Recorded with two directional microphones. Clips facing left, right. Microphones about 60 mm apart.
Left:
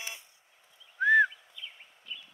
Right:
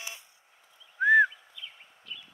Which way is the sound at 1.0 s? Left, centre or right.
Centre.